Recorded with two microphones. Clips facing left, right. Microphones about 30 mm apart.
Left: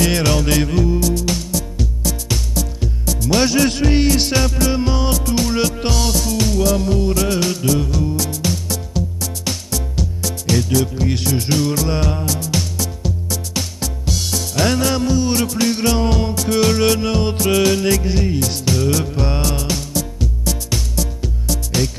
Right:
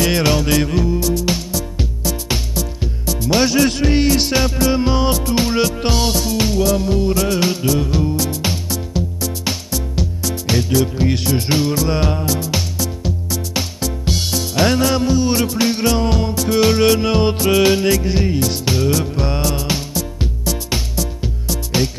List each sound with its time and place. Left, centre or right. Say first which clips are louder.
0.0 s music: right 1 dB; centre
5.1 s music: right 1 dB; right
5.6 s music: right 2 dB; centre
5.9 s music: right 2 dB; right
6.6 s music: even; centre
7.3 s music: right 1 dB; centre
11.7 s music: right 2 dB; centre
14.0 s music: right 1 dB; right
14.3 s music: right 2 dB; centre
15.8 s music: even; centre
17.8 s music: right 1 dB; centre
18.9 s music: even; centre
19.5 s music: right 1 dB; centre